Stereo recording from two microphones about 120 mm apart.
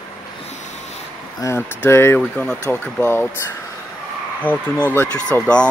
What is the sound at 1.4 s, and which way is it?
Speech, 20° left (ahead or behind).